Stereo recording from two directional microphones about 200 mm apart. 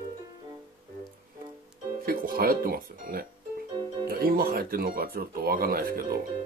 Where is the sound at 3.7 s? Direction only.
20° right (ahead or behind).